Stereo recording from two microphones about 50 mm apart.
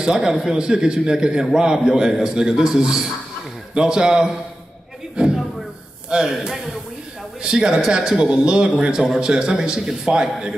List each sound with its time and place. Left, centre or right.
0.0 s a man's voice: centre
5.1 s a sound: centre
6.0 s a man's voice: centre